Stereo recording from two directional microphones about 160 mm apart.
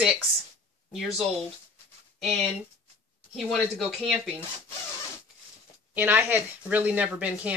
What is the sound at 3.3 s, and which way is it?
Speech, centre (ahead or behind).